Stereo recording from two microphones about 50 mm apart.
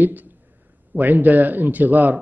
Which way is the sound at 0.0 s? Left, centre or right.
Right.